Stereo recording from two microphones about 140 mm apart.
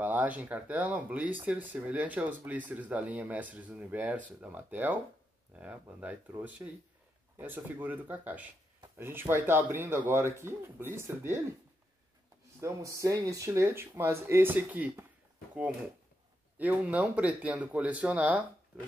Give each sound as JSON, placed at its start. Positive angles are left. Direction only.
{"t": 0.0, "sound": "speech", "side_deg": -10}
{"t": 12.5, "sound": "speech", "side_deg": -20}
{"t": 16.5, "sound": "speech", "side_deg": -10}